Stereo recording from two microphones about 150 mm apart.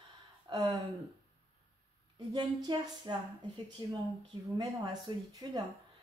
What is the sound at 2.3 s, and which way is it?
Speech, 30° right (ahead or behind).